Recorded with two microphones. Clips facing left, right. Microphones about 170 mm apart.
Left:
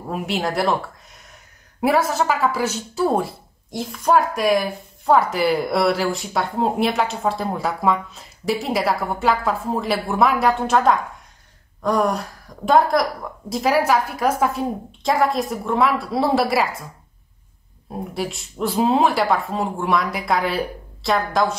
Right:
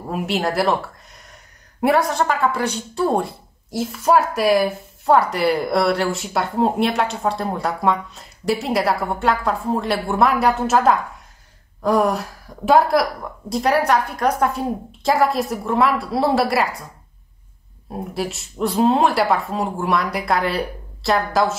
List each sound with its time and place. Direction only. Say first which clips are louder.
0.1 s speech: right 2 dB; centre (ahead or behind)
1.8 s speech: right 1 dB; centre (ahead or behind)
18.1 s speech: right 2 dB; centre (ahead or behind)